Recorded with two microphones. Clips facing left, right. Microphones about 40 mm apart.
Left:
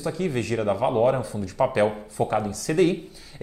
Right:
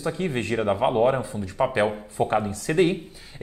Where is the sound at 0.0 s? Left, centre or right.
Right.